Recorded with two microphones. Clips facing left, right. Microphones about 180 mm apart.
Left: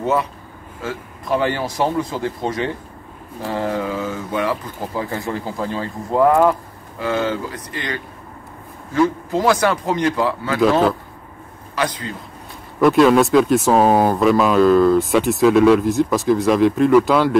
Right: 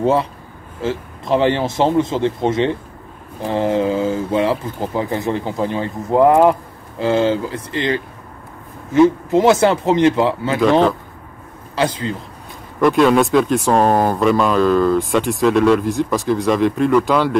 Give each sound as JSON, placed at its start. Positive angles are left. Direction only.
{"t": 0.0, "sound": "speech", "side_deg": -30}
{"t": 10.6, "sound": "speech", "side_deg": 5}
{"t": 11.7, "sound": "speech", "side_deg": -25}
{"t": 12.8, "sound": "speech", "side_deg": 0}